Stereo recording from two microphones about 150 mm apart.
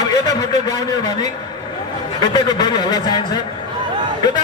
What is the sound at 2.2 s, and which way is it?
Speech, 30° left (ahead or behind).